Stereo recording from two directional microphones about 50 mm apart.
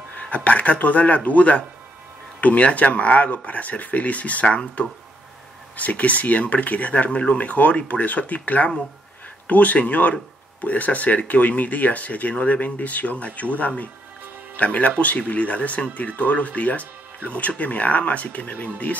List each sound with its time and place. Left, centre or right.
0.2 s speech: left